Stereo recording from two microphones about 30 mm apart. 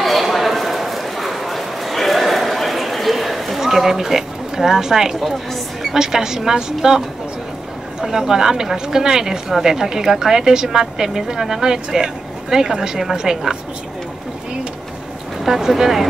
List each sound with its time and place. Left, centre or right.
0.0 s a sound: centre
3.5 s a woman's voice: centre
8.0 s a woman's voice: centre
15.4 s a woman's voice: centre